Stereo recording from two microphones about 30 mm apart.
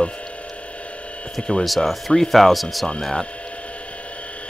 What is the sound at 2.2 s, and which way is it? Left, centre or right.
Speech, centre.